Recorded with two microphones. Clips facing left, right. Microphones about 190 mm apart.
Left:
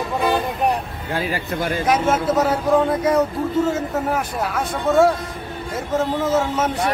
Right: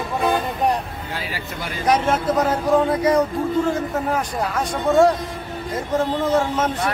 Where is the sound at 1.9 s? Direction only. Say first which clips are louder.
Right 1 dB; 5° left (ahead or behind).